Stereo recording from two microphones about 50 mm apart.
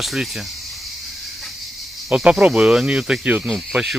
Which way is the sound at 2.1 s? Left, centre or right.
Centre.